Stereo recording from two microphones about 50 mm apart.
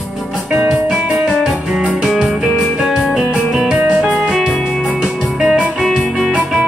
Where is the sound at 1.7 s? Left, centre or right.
Right.